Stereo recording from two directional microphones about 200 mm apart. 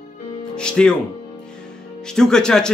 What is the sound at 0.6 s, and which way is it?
Speech, 5° left (ahead or behind).